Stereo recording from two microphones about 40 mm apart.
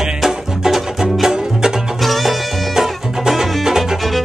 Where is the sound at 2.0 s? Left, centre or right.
Centre.